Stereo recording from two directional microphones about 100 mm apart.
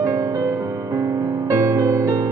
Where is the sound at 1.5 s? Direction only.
30° right (ahead or behind).